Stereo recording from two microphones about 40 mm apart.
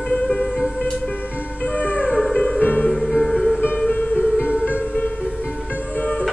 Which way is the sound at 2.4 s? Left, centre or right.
Left.